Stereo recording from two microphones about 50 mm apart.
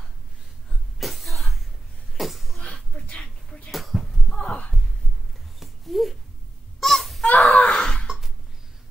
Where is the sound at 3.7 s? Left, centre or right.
Centre.